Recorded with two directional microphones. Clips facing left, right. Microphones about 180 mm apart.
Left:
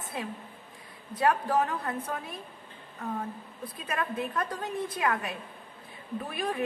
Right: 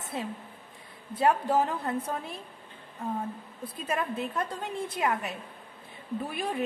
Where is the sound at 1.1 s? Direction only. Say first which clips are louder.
Right 1 dB; 25° right (ahead or behind).